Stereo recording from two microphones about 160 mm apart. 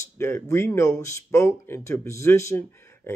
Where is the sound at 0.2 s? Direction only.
15° left (ahead or behind).